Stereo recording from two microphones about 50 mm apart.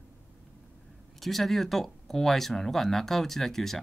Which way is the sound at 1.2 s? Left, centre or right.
Centre.